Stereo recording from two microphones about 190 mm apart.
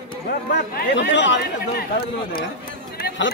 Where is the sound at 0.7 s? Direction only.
70° left (ahead or behind).